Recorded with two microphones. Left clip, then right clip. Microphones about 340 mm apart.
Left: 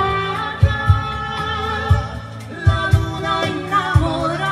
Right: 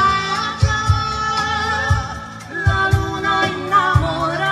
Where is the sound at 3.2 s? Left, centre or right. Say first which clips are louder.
Right 2 dB; right.